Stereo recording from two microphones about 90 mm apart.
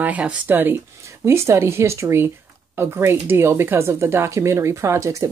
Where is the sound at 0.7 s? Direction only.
35° right (ahead or behind).